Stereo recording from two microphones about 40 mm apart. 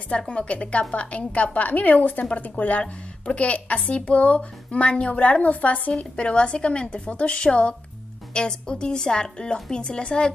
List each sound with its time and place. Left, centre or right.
0.3 s speech: left
6.1 s a woman's voice: left